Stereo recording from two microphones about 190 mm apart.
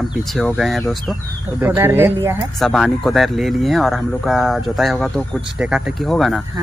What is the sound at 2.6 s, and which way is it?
Speech, centre (ahead or behind).